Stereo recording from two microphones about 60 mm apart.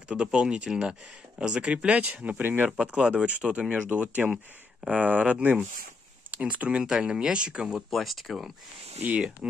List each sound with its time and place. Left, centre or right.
0.1 s speech: centre
2.8 s speech: centre
7.9 s speech: centre
9.0 s speech: centre